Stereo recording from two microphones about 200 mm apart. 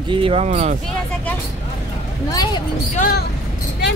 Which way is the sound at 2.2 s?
20° left (ahead or behind).